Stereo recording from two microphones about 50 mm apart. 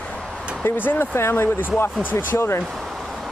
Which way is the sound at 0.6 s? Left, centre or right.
Left.